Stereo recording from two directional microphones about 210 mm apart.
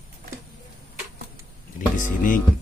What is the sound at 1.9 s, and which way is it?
Speech, 40° left (ahead or behind).